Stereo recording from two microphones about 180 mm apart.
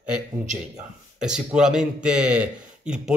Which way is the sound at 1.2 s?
5° right (ahead or behind).